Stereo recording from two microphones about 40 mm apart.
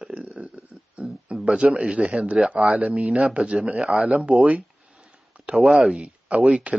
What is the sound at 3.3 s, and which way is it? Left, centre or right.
Speech, right.